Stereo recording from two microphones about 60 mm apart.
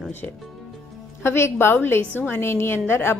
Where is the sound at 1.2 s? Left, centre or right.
Left.